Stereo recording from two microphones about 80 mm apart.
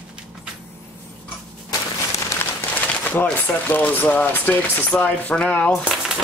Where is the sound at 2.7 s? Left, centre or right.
Left.